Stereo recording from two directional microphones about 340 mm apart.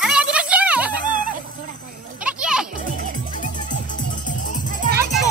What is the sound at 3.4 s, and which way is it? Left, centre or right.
Music, left.